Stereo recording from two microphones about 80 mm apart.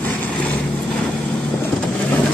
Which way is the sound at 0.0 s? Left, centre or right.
Left.